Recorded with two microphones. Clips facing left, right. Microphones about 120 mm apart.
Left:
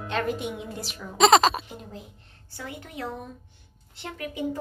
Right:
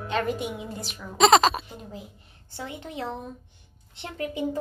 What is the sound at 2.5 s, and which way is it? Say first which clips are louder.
A woman's voice: right 3 dB; 25° right (ahead or behind).